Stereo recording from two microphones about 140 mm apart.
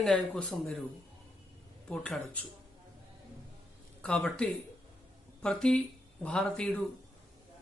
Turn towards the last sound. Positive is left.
turn(degrees=10)  # may be behind; listen again after turning